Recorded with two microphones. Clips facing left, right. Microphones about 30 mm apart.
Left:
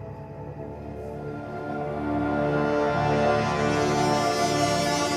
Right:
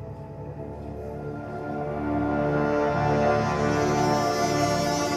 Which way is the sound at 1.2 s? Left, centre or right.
Left.